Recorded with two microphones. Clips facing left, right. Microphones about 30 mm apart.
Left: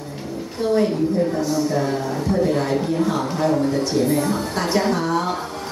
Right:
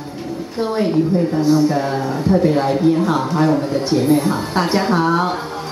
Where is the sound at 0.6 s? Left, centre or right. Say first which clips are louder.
Right 1 dB; right.